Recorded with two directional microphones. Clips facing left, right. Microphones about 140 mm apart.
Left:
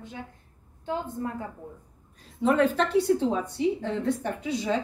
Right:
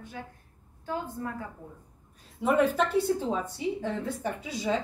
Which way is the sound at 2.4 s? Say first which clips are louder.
Left 2 dB; 10° right (ahead or behind).